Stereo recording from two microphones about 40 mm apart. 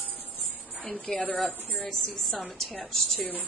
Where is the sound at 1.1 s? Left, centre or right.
Centre.